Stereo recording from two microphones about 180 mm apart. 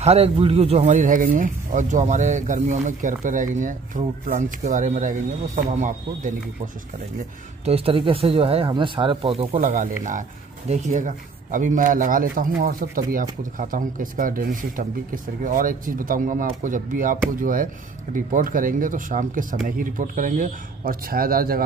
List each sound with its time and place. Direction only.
0.0 s speech: 35° right (ahead or behind)
7.6 s speech: 30° right (ahead or behind)
9.6 s speech: 45° right (ahead or behind)